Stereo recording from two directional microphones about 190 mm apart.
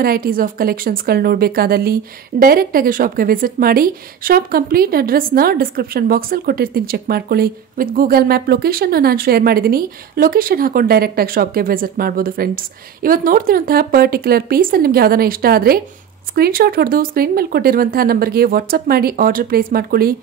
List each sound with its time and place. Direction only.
0.0 s a woman's voice: 50° right (ahead or behind)